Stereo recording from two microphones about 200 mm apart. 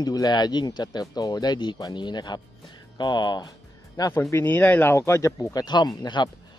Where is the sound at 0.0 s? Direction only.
20° left (ahead or behind).